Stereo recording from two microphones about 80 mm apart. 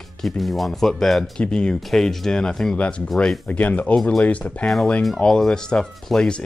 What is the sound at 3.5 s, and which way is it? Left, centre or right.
Speech, centre.